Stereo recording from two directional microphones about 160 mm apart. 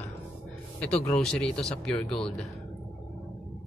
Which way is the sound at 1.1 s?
5° left (ahead or behind).